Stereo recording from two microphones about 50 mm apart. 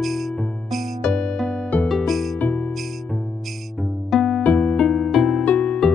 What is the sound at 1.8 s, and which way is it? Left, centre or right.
Music, centre.